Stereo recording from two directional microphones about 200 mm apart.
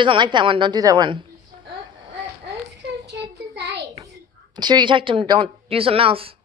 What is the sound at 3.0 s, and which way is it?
Child singing, 55° right (ahead or behind).